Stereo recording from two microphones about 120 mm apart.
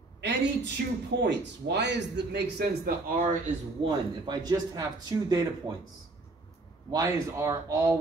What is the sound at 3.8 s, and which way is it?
Speech, 35° right (ahead or behind).